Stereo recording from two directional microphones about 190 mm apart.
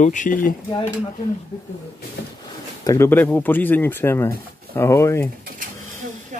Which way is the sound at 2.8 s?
15° left (ahead or behind).